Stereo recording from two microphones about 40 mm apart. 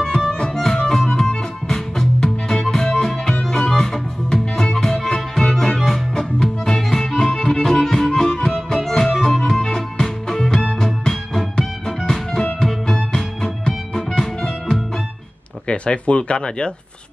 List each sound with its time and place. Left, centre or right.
0.5 s music: centre
15.6 s speech: left